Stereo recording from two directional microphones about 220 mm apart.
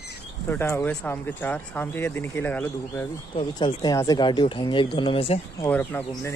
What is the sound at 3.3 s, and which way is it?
Speech, 20° left (ahead or behind).